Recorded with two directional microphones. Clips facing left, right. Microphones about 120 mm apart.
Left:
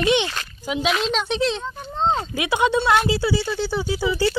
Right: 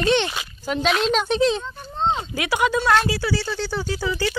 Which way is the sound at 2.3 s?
20° left (ahead or behind).